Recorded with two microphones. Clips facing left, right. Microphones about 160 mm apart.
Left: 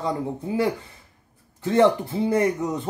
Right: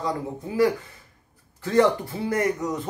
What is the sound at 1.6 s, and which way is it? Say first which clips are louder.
Speech: left 2 dB; 25° left (ahead or behind).